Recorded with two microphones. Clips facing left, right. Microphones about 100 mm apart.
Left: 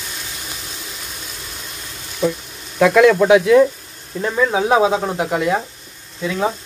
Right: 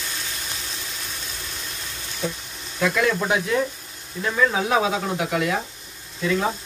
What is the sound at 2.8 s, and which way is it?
Speech, 90° left.